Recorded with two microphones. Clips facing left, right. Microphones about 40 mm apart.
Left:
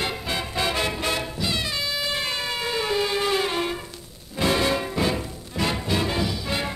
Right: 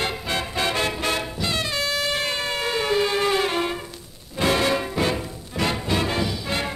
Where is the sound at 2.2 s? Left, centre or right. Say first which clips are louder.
Right 2 dB; right.